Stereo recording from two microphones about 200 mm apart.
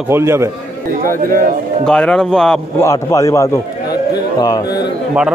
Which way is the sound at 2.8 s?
15° left (ahead or behind).